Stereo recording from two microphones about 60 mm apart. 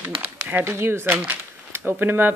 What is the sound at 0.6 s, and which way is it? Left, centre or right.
Speech, right.